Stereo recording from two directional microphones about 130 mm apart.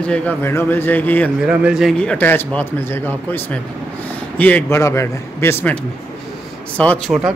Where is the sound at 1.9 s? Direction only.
10° left (ahead or behind).